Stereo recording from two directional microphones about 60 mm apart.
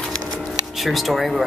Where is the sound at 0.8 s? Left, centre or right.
Centre.